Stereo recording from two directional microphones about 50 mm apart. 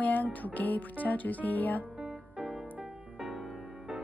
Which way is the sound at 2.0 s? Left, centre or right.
Centre.